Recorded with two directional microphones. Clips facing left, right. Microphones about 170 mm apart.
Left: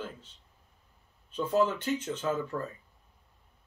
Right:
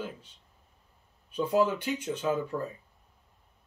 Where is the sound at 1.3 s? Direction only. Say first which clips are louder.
Right 1 dB; 10° right (ahead or behind).